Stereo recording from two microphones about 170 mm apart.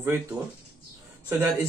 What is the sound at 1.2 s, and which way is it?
Speech, 10° right (ahead or behind).